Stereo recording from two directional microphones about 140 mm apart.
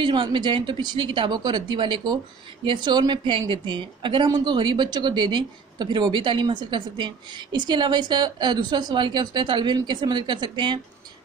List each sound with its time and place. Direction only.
0.0 s a woman's voice: 35° right (ahead or behind)